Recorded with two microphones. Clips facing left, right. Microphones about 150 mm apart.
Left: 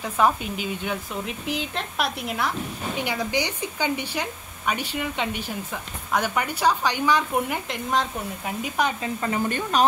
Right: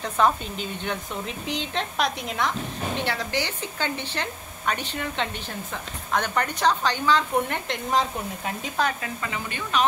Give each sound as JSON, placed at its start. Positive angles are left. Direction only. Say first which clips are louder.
{"t": 0.0, "sound": "speech", "louder": "even", "side_deg": 10}
{"t": 8.7, "sound": "speech", "louder": "left 1 dB", "side_deg": 20}
{"t": 9.2, "sound": "speech", "louder": "left 7 dB", "side_deg": 45}